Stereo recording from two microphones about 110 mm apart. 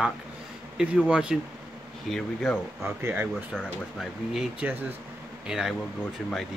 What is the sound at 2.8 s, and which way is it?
Speech, 20° right (ahead or behind).